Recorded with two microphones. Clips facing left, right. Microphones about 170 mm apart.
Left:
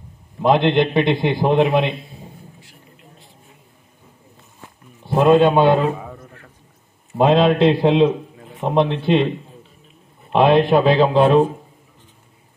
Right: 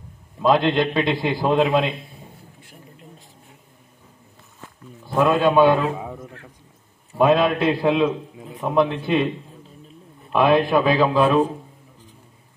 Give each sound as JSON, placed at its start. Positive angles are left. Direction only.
{"t": 0.4, "sound": "a man's voice", "side_deg": 25}
{"t": 5.0, "sound": "a man's voice", "side_deg": 25}
{"t": 5.9, "sound": "a sound", "side_deg": -10}
{"t": 7.2, "sound": "a man's voice", "side_deg": 25}
{"t": 10.3, "sound": "a man's voice", "side_deg": 25}